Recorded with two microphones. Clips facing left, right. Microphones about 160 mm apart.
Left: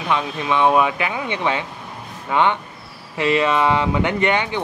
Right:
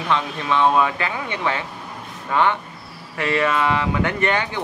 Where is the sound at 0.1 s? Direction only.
15° left (ahead or behind).